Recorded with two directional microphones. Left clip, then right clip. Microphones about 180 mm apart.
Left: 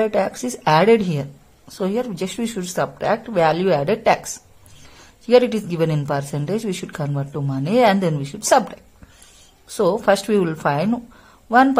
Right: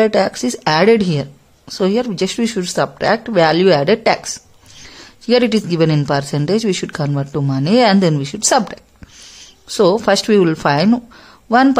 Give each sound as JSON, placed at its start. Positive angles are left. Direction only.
{"t": 0.0, "sound": "speech", "side_deg": -25}
{"t": 5.2, "sound": "speech", "side_deg": -25}